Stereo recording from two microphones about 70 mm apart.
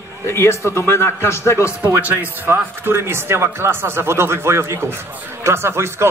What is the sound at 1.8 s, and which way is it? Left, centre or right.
Speech, right.